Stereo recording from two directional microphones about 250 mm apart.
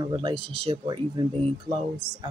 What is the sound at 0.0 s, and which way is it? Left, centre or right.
Speech, centre.